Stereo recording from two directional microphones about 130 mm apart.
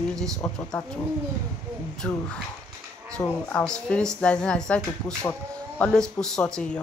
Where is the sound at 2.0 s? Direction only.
5° left (ahead or behind).